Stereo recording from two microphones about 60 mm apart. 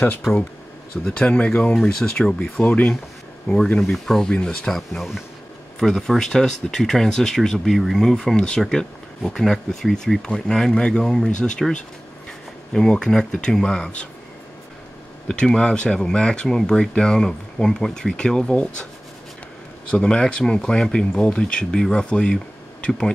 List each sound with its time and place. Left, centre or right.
1.0 s speech: centre
2.6 s speech: left
3.9 s speech: centre
4.3 s speech: centre
4.7 s speech: centre
15.2 s speech: centre
19.9 s speech: centre